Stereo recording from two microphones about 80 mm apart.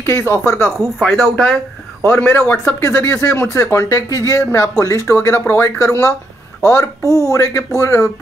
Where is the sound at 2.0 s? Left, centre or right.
Left.